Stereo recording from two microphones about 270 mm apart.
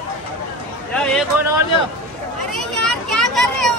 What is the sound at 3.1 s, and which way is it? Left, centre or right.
Children playing, centre.